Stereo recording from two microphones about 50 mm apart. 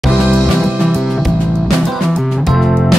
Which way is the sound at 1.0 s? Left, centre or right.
Centre.